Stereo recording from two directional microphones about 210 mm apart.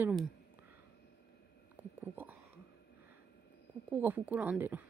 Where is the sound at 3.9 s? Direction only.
10° right (ahead or behind).